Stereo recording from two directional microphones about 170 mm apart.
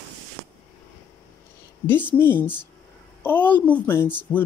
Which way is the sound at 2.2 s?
10° left (ahead or behind).